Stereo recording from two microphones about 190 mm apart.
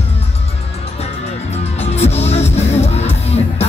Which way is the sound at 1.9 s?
35° left (ahead or behind).